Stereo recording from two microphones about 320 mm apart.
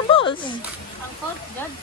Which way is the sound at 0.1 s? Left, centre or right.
Centre.